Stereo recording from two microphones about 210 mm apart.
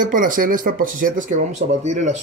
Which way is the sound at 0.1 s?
40° right (ahead or behind).